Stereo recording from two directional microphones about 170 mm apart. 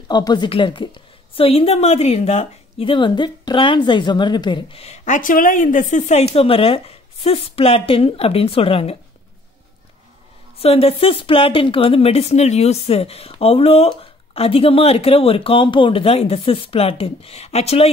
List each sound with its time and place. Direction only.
0.1 s a woman's voice: 25° left (ahead or behind)
10.6 s a woman's voice: 35° left (ahead or behind)